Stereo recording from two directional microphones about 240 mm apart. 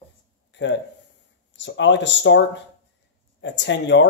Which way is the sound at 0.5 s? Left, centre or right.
Left.